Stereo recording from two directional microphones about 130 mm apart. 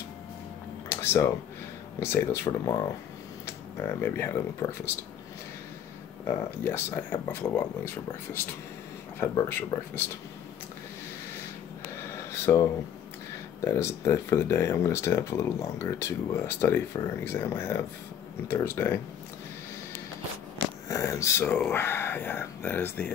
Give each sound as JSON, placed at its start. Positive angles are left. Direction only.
{"t": 0.8, "sound": "a sound", "side_deg": 20}
{"t": 2.0, "sound": "speech", "side_deg": 20}
{"t": 3.8, "sound": "speech", "side_deg": 20}
{"t": 6.2, "sound": "speech", "side_deg": 20}
{"t": 9.5, "sound": "speech", "side_deg": 15}
{"t": 12.1, "sound": "a sound", "side_deg": 20}
{"t": 13.7, "sound": "speech", "side_deg": 20}
{"t": 20.9, "sound": "speech", "side_deg": 25}